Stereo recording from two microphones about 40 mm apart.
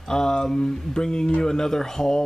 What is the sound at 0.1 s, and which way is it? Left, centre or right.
Speech, centre.